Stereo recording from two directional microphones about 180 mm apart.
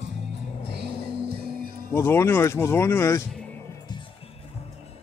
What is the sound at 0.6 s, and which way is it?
Music, 65° right (ahead or behind).